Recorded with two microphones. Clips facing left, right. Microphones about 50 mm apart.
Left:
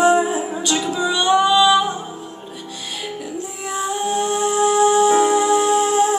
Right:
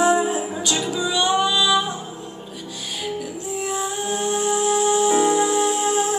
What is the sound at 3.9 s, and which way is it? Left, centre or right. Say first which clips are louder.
Music: left 6 dB; centre.